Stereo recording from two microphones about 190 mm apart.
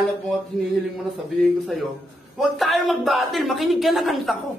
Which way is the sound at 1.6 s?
Centre (ahead or behind).